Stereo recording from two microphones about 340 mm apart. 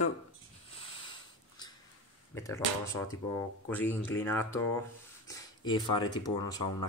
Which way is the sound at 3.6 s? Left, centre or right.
Centre.